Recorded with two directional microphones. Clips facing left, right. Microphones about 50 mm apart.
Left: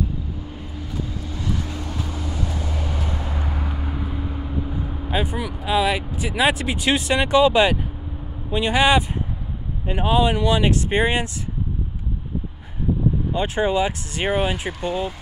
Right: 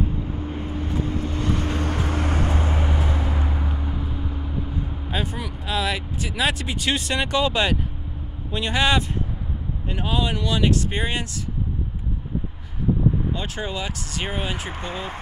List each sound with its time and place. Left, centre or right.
0.0 s vehicle: right
2.9 s vehicle: right
3.5 s vehicle: centre
5.1 s speech: centre
13.3 s speech: left
14.7 s speech: right